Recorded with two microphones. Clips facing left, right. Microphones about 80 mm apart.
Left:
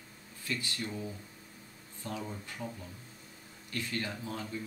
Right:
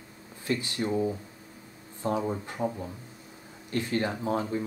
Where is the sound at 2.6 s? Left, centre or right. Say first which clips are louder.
Right 11 dB; right.